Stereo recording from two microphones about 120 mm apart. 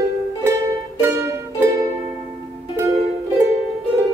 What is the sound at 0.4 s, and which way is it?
Music, 20° right (ahead or behind).